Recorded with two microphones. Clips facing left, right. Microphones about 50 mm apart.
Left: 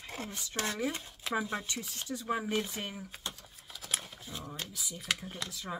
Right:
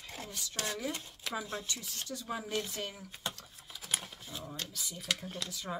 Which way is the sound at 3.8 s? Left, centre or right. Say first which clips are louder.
Even; centre.